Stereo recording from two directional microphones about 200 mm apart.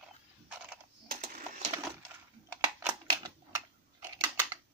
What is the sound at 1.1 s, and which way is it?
Sewing machine, 50° right (ahead or behind).